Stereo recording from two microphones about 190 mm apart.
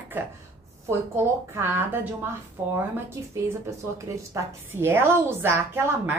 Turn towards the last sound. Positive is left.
turn(degrees=-10)  # may be behind; listen again after turning